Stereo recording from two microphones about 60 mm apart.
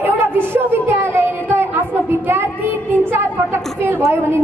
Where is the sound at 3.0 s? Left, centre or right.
Right.